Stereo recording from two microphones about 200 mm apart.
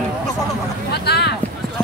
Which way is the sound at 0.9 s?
55° left (ahead or behind).